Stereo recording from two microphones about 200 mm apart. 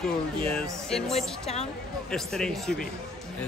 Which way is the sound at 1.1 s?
30° left (ahead or behind).